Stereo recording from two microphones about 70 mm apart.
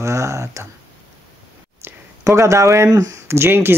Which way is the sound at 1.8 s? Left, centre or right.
Right.